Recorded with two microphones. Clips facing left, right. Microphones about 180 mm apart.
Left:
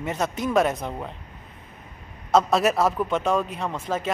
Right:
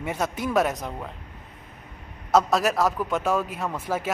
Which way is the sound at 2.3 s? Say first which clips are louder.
Left 1 dB; centre (ahead or behind).